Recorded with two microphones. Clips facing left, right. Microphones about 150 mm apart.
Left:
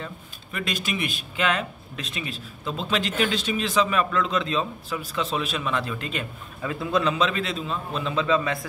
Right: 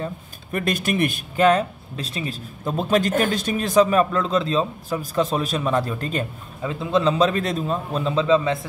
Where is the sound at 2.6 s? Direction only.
50° right (ahead or behind).